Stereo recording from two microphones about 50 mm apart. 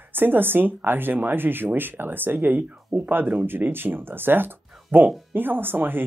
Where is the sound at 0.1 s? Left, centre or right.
Right.